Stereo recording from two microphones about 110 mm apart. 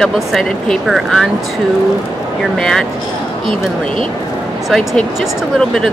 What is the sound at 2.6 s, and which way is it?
Speech, 5° left (ahead or behind).